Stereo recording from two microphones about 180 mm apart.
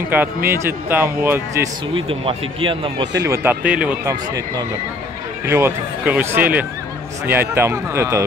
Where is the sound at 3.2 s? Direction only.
15° right (ahead or behind).